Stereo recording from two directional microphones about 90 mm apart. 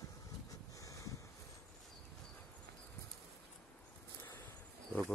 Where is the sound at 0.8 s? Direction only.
35° left (ahead or behind).